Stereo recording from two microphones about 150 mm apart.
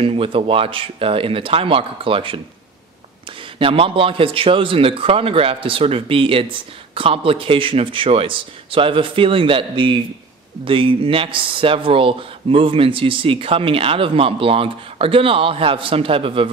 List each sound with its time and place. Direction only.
0.0 s a man's voice: 35° right (ahead or behind)
3.5 s a man's voice: 35° right (ahead or behind)